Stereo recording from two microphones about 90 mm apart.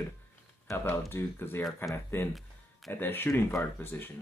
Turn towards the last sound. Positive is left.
turn(degrees=25)  # may be behind; listen again after turning